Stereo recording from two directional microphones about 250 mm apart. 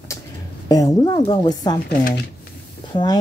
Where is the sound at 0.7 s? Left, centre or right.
Centre.